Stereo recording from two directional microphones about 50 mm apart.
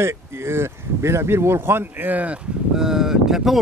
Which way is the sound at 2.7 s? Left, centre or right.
Centre.